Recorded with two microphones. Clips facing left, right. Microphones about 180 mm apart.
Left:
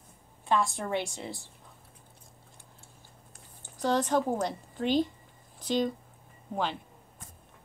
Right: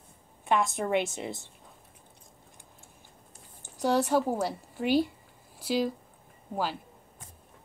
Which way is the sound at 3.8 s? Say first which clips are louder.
Right 2 dB; 10° right (ahead or behind).